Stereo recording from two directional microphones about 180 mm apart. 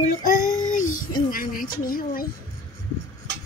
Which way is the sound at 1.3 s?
50° left (ahead or behind).